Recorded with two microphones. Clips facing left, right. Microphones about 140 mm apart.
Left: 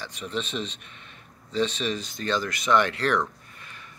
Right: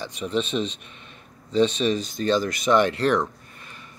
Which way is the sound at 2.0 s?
15° right (ahead or behind).